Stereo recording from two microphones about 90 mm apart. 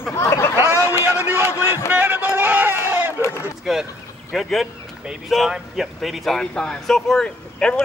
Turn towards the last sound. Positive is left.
turn(degrees=10)  # may be behind; listen again after turning